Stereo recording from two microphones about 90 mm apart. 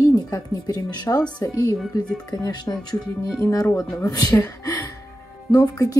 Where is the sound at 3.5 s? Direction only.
35° left (ahead or behind).